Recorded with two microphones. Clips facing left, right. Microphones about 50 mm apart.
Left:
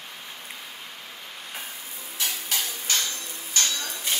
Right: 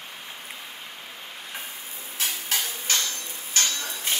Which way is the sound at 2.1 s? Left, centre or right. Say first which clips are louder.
Right 1 dB; right.